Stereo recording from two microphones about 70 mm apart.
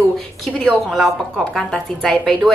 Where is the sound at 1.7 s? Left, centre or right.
Centre.